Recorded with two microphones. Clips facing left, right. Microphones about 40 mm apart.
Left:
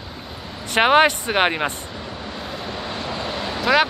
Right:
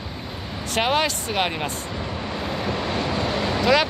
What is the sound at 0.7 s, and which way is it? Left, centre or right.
Speech, left.